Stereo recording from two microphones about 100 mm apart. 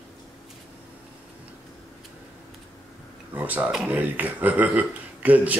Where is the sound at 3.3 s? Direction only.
15° right (ahead or behind).